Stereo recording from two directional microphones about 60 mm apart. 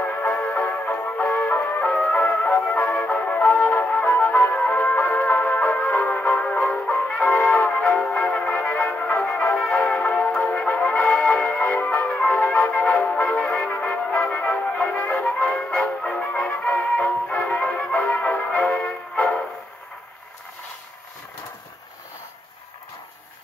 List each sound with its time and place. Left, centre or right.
0.0 s music: left
1.9 s music: centre
2.1 s music: left
2.8 s music: centre
3.1 s music: left
3.6 s flute: left
4.0 s music: left
16.0 s music: centre
16.3 s music: left